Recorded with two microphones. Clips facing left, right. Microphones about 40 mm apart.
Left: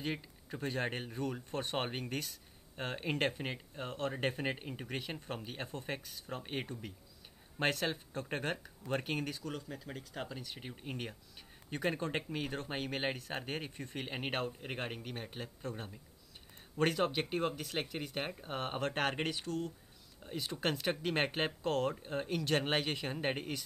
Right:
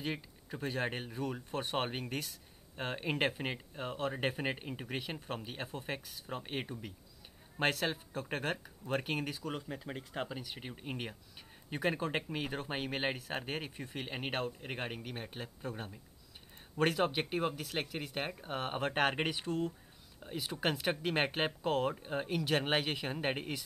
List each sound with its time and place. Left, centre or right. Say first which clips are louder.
0.0 s speech: even; centre
9.5 s speech: right 2 dB; right
20.2 s speech: right 1 dB; centre